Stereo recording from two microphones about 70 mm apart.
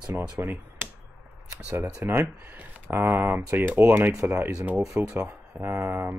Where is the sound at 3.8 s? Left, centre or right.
Right.